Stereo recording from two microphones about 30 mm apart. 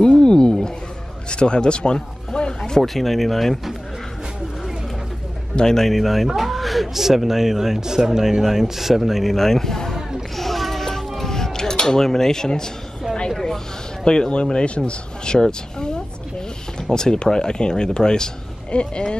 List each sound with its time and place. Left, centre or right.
0.0 s wild animals: left
1.3 s speech: left
2.0 s a sound: left
2.8 s speech: centre
5.5 s speech: left
5.9 s a sound: centre
6.9 s speech: centre
9.3 s speech: centre
10.3 s a sound: centre; by 12.0 s left
12.0 s speech: centre
14.0 s speech: left
14.9 s speech: left